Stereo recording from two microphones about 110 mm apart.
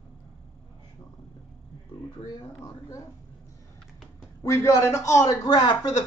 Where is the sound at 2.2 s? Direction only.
45° left (ahead or behind).